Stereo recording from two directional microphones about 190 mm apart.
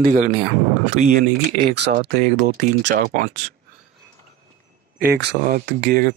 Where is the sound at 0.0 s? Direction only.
45° right (ahead or behind).